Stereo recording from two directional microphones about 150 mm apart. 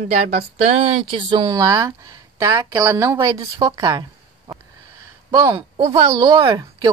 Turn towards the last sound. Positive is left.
turn(degrees=-20)  # may be behind; listen again after turning